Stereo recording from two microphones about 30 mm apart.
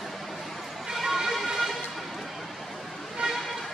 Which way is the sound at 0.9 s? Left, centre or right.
Centre.